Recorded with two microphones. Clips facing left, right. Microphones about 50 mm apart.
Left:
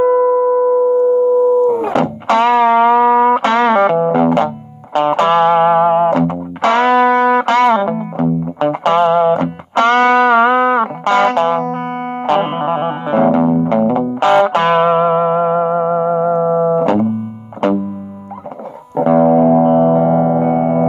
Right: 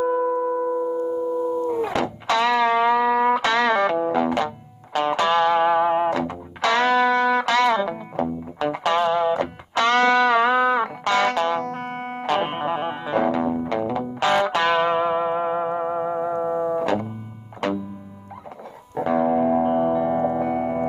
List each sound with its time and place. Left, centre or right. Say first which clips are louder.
0.0 s a sound: left 10 dB; left
1.7 s music: left 9 dB; left
12.3 s music: left 8 dB; left
19.0 s music: left 10 dB; left